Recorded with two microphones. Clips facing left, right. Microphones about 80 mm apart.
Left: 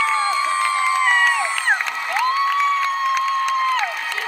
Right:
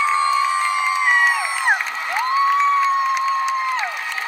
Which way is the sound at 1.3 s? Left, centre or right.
Centre.